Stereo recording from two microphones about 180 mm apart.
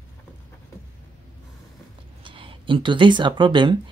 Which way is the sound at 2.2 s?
30° right (ahead or behind).